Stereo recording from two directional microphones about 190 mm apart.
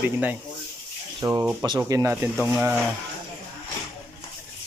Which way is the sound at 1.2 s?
20° right (ahead or behind).